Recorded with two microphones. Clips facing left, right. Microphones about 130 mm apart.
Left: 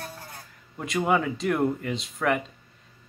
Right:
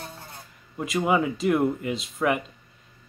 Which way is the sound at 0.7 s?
5° right (ahead or behind).